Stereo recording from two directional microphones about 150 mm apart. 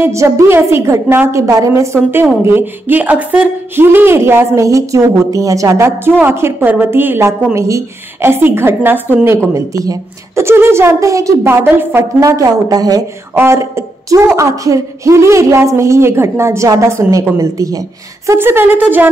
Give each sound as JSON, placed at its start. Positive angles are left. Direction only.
{"t": 0.0, "sound": "a woman's voice", "side_deg": -20}